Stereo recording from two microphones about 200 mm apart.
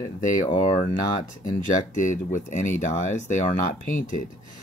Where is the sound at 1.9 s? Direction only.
40° left (ahead or behind).